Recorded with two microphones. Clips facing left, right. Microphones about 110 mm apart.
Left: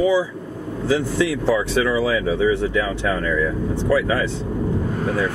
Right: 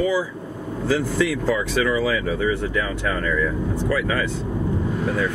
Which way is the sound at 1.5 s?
10° left (ahead or behind).